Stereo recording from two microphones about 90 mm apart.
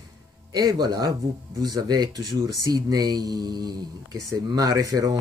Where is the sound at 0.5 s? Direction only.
45° right (ahead or behind).